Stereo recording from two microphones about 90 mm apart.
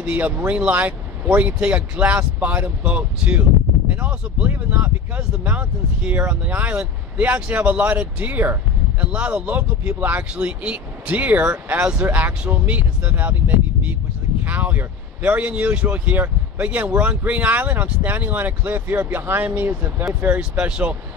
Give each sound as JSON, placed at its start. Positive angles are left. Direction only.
{"t": 0.0, "sound": "speech", "side_deg": -15}
{"t": 20.3, "sound": "speech", "side_deg": -10}